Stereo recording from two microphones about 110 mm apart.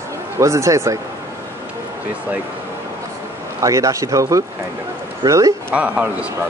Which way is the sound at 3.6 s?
30° right (ahead or behind).